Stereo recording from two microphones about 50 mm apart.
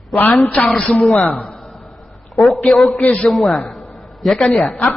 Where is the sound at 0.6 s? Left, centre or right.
Centre.